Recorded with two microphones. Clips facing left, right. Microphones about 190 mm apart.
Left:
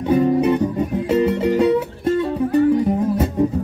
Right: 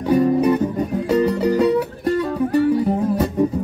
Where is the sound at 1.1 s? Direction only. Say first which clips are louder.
Even; 25° left (ahead or behind).